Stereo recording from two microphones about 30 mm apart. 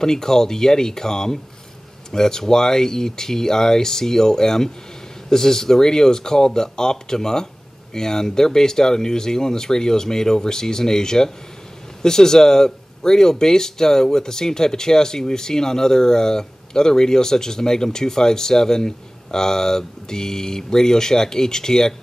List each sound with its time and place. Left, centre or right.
0.0 s speech: centre